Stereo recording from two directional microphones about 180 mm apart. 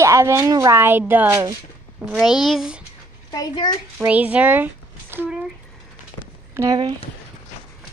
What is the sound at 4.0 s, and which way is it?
Speech, 10° right (ahead or behind).